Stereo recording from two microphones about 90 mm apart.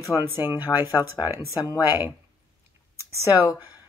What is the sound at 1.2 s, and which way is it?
Speech, 30° right (ahead or behind).